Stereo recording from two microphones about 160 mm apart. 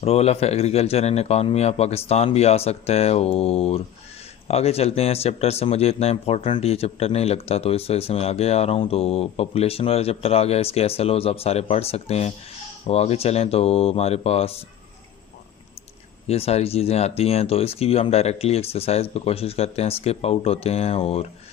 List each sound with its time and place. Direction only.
0.0 s speech: 40° left (ahead or behind)
16.3 s speech: 40° left (ahead or behind)